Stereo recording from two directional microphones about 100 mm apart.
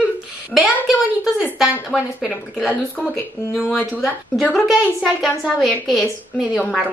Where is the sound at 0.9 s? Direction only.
5° right (ahead or behind).